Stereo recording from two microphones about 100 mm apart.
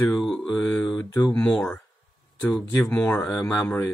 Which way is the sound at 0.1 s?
5° left (ahead or behind).